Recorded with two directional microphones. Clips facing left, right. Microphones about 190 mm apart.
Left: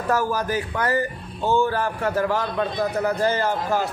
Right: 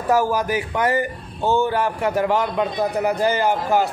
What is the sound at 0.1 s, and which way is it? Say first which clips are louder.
Speech: right 4 dB; 10° right (ahead or behind).